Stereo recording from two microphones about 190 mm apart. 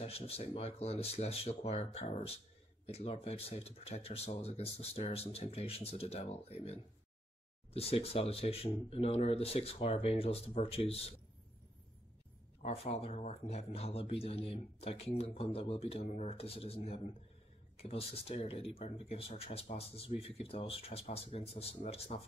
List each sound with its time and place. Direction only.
0.0 s speech: 35° left (ahead or behind)
12.6 s speech: 30° left (ahead or behind)